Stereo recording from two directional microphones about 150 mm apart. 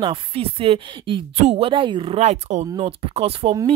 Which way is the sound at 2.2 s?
50° right (ahead or behind).